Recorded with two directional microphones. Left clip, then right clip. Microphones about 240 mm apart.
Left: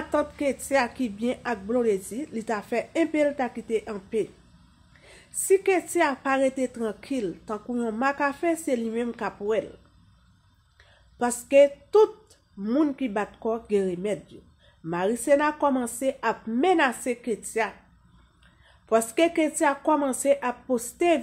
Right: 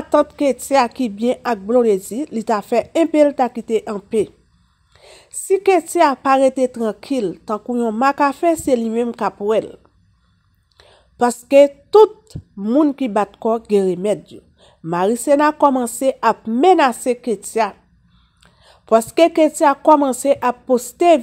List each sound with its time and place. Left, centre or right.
0.1 s speech: right
10.8 s speech: right